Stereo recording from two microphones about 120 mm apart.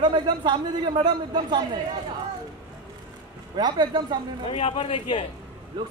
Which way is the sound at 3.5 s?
35° right (ahead or behind).